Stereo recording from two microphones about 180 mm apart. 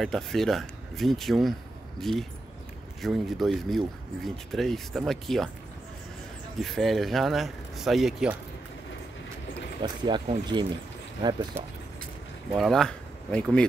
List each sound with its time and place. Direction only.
0.0 s speech: centre (ahead or behind)
6.6 s speech: centre (ahead or behind)
9.8 s speech: 25° right (ahead or behind)
12.5 s speech: centre (ahead or behind)